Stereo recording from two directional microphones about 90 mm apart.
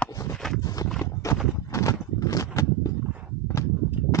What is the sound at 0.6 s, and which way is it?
Horse, 45° left (ahead or behind).